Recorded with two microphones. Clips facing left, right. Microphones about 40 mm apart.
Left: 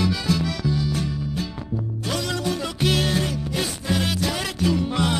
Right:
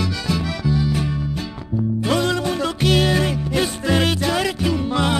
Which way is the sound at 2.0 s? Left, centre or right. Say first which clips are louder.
Right 8 dB; right.